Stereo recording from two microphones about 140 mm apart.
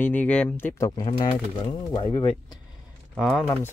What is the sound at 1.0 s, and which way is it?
Speech, 45° left (ahead or behind).